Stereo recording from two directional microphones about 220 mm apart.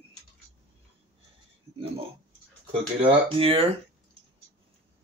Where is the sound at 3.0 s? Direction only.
25° right (ahead or behind).